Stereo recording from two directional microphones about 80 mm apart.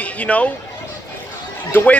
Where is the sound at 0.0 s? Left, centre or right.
Centre.